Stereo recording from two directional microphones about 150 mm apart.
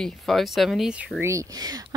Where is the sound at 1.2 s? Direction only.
20° right (ahead or behind).